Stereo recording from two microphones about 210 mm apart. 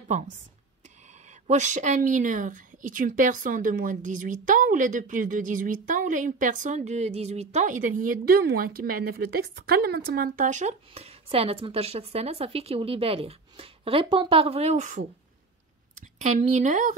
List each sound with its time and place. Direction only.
1.5 s a woman's voice: 35° right (ahead or behind)
16.2 s a woman's voice: 30° right (ahead or behind)